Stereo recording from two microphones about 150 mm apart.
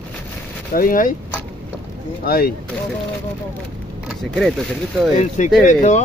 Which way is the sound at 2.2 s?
90° left.